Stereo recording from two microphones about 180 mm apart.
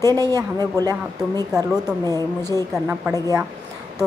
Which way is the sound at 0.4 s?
20° right (ahead or behind).